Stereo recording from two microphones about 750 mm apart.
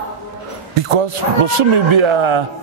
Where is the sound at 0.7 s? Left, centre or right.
Right.